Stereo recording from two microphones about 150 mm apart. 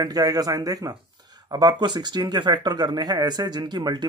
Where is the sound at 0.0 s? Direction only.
25° right (ahead or behind).